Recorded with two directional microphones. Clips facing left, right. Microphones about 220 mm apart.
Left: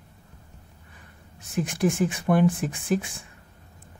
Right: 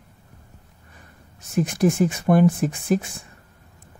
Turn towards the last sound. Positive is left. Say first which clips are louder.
# right 4 dB
turn(degrees=-45)  # may be behind; listen again after turning